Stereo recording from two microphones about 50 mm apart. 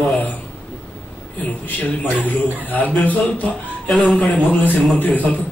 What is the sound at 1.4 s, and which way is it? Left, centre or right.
A man's voice, left.